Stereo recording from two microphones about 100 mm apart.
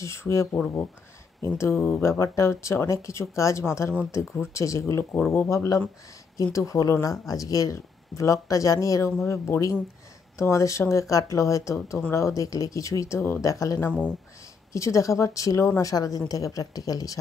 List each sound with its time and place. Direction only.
0.0 s speech: 30° left (ahead or behind)